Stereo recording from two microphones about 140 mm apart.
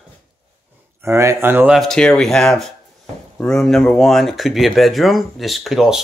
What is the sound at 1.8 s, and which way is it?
Speech, 5° left (ahead or behind).